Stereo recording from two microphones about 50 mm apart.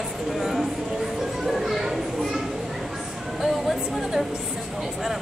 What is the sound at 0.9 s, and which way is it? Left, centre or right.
Children playing, centre.